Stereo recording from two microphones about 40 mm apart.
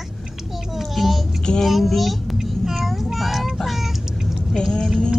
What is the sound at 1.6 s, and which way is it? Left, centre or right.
Child singing, centre.